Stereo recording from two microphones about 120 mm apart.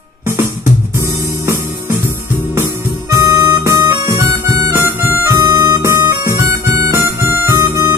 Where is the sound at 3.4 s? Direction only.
35° right (ahead or behind).